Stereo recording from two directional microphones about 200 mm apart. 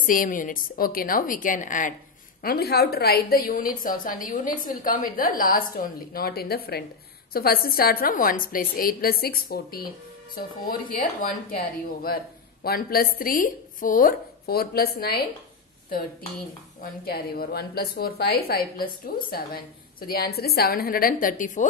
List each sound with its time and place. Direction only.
0.0 s a woman's voice: 45° left (ahead or behind)
2.4 s a woman's voice: 50° left (ahead or behind)
12.6 s a woman's voice: 50° left (ahead or behind)
16.8 s a woman's voice: 50° left (ahead or behind)